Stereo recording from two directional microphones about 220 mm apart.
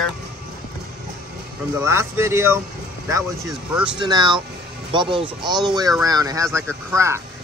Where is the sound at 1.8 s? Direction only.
10° right (ahead or behind).